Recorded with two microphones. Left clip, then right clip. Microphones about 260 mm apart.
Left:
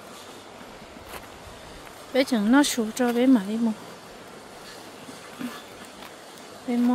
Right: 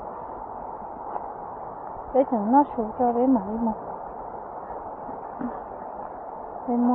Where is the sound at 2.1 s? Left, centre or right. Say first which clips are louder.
Right 2 dB; left.